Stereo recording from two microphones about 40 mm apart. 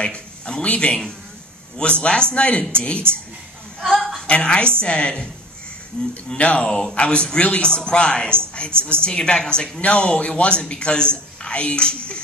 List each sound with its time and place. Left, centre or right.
0.0 s a man's voice: left
3.8 s chuckle: centre
4.3 s a man's voice: left
7.6 s a man's voice: left